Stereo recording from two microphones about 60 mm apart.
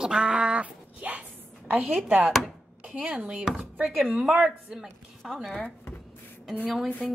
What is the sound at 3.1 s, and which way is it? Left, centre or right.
Chopping, centre.